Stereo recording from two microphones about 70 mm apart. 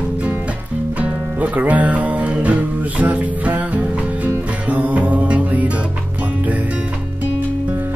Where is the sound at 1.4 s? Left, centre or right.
Right.